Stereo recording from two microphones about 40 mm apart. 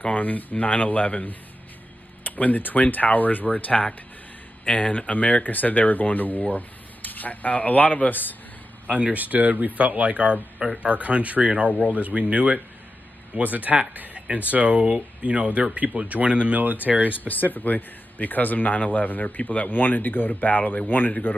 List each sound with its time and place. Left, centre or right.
0.1 s a man's voice: left
9.0 s speech: right
17.2 s a man's voice: left
19.7 s a man's voice: left